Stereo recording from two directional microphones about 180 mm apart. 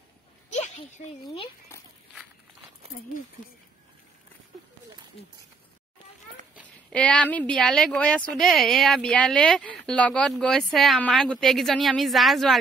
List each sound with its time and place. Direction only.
0.5 s a sound: 40° left (ahead or behind)
1.2 s a child's voice: 30° left (ahead or behind)
6.9 s speech: 5° left (ahead or behind)